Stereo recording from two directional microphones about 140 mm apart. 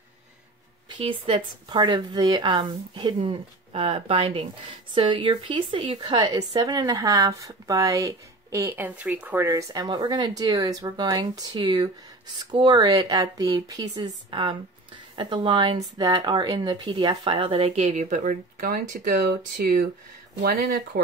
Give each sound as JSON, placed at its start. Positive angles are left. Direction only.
{"t": 0.8, "sound": "speech", "side_deg": -40}